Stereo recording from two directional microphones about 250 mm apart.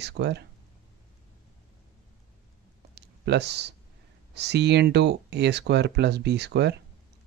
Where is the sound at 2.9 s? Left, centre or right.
Right.